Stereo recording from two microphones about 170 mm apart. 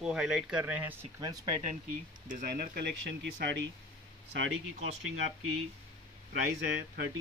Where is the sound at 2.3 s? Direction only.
60° right (ahead or behind); by 3.7 s 90° right.